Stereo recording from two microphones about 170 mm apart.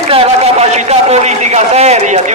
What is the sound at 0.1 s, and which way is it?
A man's voice, 35° right (ahead or behind).